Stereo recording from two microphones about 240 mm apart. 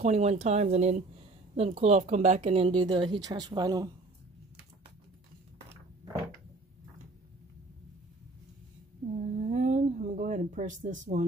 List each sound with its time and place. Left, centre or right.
0.0 s speech: right
9.2 s speech: right